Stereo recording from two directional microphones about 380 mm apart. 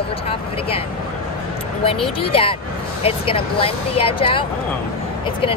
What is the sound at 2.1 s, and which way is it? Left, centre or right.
Speech, centre.